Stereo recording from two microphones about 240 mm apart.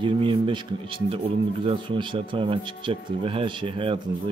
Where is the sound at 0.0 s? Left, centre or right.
Right.